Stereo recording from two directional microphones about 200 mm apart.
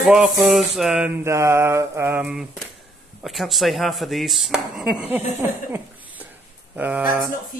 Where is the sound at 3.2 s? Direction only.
Centre (ahead or behind).